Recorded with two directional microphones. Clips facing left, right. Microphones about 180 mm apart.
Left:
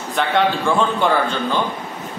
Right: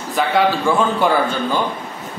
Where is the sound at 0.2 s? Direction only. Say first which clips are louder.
Right 2 dB; 5° right (ahead or behind).